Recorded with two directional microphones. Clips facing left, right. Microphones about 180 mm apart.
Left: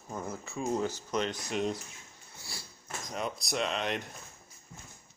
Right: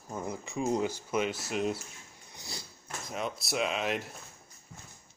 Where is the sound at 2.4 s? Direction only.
20° right (ahead or behind).